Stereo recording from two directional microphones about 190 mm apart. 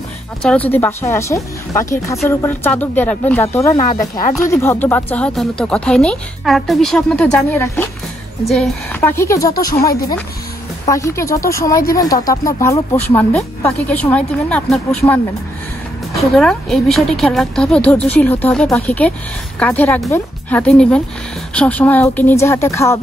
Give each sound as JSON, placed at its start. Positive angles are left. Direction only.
{"t": 0.4, "sound": "speech", "side_deg": 5}
{"t": 9.0, "sound": "speech", "side_deg": 15}
{"t": 10.9, "sound": "speech", "side_deg": 15}
{"t": 16.2, "sound": "speech", "side_deg": 0}